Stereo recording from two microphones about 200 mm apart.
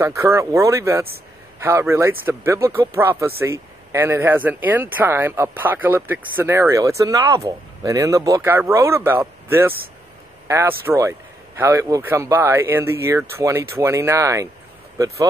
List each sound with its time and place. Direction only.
0.0 s speech: 15° right (ahead or behind)